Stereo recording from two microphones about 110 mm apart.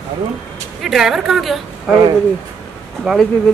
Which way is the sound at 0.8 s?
5° right (ahead or behind).